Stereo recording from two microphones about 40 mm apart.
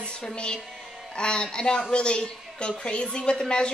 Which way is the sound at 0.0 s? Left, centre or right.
Left.